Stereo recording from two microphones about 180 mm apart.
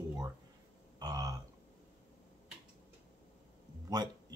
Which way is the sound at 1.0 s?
20° right (ahead or behind).